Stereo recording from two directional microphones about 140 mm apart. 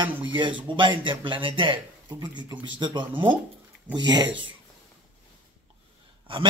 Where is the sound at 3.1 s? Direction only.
15° right (ahead or behind).